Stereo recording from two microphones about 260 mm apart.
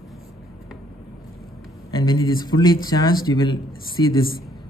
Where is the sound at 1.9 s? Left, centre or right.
Centre.